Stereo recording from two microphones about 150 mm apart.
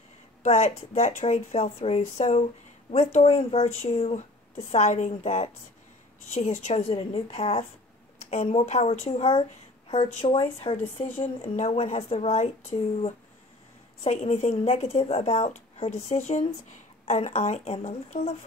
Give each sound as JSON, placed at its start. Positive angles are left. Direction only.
{"t": 0.4, "sound": "a woman's voice", "side_deg": 45}